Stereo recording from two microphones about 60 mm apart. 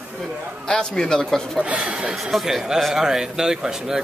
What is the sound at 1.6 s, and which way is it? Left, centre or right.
Speech, centre.